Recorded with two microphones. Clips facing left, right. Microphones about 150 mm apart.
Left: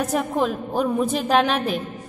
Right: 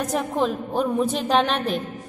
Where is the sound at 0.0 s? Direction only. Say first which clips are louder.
Left 1 dB; 5° left (ahead or behind).